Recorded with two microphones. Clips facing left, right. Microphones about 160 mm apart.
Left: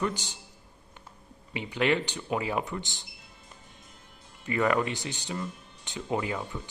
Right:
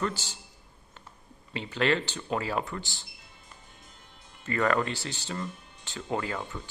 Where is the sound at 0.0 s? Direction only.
15° left (ahead or behind).